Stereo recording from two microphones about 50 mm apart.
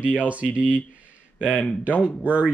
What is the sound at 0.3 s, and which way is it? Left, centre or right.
Speech, right.